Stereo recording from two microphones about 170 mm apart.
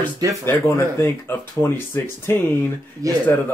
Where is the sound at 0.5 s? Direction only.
15° left (ahead or behind).